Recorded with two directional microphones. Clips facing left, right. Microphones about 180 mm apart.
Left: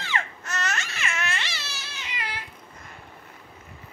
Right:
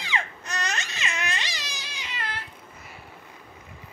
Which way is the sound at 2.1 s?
10° left (ahead or behind).